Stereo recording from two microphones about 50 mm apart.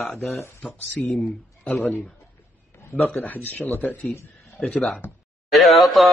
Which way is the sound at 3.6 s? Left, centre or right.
Left.